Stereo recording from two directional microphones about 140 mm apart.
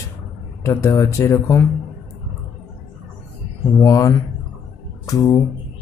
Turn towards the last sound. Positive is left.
turn(degrees=25)  # may be behind; listen again after turning